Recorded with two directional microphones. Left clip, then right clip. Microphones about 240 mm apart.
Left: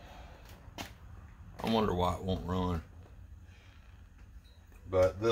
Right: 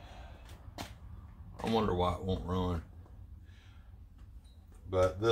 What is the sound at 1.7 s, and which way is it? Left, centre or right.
Speech, left.